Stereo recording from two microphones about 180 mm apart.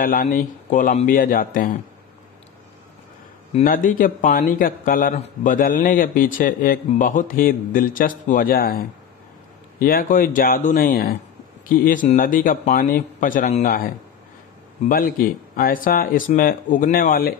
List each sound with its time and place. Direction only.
0.0 s a man's voice: 50° left (ahead or behind)
3.6 s a man's voice: 50° left (ahead or behind)